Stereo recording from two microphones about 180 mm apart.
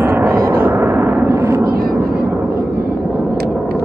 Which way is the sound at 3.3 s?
60° right (ahead or behind).